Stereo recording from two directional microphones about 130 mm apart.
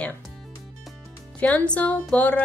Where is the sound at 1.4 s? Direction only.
10° left (ahead or behind).